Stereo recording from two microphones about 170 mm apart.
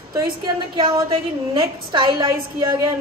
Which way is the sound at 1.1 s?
30° right (ahead or behind).